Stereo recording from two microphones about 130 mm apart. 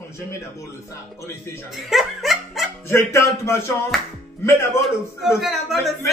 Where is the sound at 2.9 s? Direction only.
20° left (ahead or behind).